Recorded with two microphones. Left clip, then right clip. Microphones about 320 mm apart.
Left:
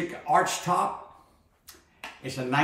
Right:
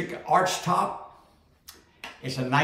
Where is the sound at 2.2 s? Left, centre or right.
Centre.